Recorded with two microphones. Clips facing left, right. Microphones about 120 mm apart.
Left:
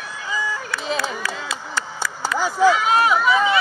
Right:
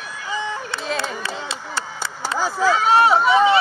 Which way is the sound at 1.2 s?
30° right (ahead or behind).